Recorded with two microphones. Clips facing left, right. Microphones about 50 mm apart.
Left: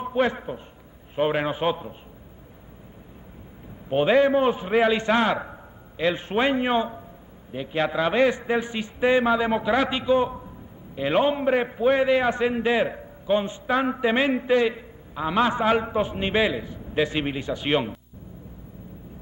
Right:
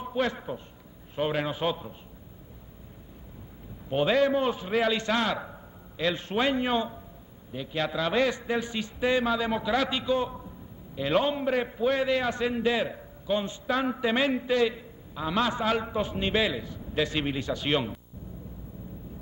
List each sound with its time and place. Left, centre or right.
0.0 s a man's voice: left
3.9 s a man's voice: left